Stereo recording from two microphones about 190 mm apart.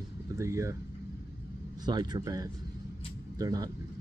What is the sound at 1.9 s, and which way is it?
Speech, 20° right (ahead or behind).